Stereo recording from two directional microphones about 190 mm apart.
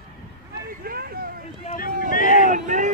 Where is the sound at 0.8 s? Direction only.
50° right (ahead or behind).